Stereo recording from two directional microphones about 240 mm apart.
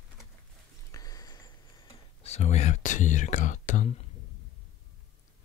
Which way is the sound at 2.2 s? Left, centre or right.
Left.